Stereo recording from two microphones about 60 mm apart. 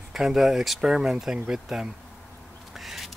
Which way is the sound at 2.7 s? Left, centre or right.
Centre.